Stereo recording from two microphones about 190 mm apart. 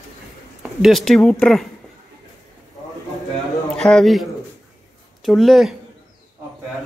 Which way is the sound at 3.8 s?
Centre (ahead or behind).